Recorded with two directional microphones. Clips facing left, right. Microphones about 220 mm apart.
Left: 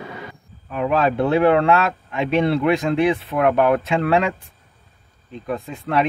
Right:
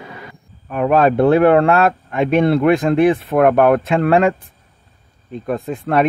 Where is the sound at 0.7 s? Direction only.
50° right (ahead or behind).